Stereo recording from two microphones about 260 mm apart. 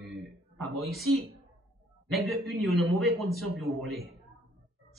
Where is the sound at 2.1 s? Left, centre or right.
Centre.